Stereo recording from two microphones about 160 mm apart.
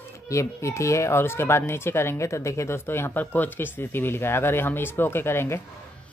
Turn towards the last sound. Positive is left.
turn(degrees=15)  # may be behind; listen again after turning